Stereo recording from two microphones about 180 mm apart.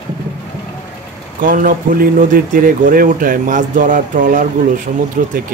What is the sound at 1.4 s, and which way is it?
Speech, 50° right (ahead or behind).